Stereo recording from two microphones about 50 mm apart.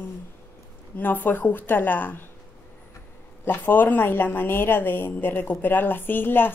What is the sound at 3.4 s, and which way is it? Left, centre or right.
A woman's voice, left.